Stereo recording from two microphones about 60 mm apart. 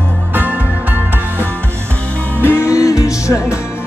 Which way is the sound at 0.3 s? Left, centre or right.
Right.